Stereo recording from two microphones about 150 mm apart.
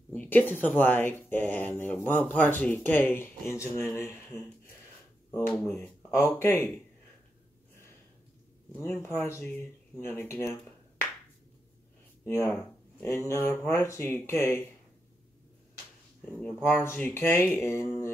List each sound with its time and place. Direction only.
0.1 s speech: 10° left (ahead or behind)
8.7 s speech: 15° left (ahead or behind)
13.0 s speech: 20° left (ahead or behind)
16.3 s speech: 5° left (ahead or behind)